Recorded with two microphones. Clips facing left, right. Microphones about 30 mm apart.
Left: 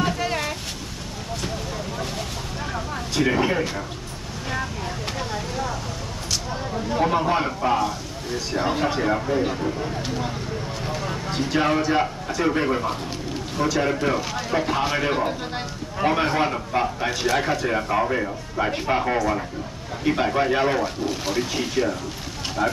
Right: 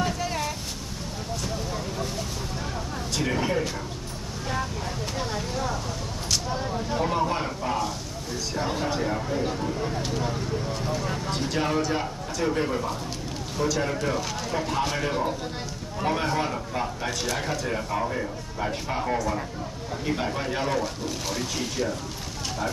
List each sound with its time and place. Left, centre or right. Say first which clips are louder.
0.0 s boat: left 4 dB; left
3.2 s speech: left 5 dB; left
5.3 s vehicle: left 1 dB; centre
6.9 s a sound: left 5 dB; left
8.5 s speech: left 5 dB; left
11.1 s a sound: left 3 dB; centre
11.6 s speech: left 6 dB; left